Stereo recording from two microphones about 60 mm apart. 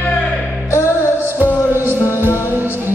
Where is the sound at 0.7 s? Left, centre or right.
Left.